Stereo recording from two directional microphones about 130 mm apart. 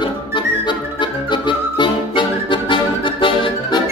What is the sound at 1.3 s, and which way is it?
Music, 35° left (ahead or behind).